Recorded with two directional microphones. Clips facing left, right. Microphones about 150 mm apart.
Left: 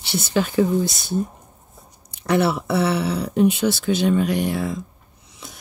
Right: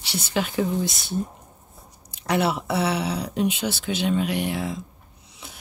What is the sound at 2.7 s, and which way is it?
Speech, 55° left (ahead or behind).